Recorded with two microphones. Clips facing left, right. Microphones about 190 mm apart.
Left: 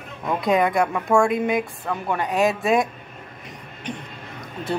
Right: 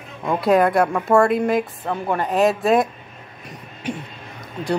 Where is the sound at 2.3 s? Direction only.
Centre (ahead or behind).